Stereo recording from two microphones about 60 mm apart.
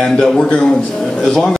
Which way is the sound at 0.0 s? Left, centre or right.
Centre.